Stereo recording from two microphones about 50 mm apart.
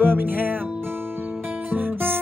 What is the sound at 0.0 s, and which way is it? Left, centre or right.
Music, right.